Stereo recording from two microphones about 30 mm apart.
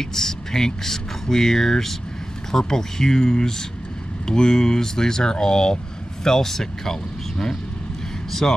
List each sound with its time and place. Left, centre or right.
0.0 s speech: centre